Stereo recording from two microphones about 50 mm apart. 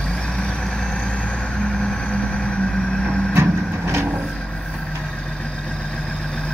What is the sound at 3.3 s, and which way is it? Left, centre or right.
Vehicle, right.